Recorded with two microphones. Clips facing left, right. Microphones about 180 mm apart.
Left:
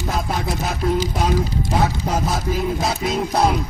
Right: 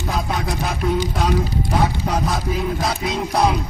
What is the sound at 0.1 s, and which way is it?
Music, 5° left (ahead or behind).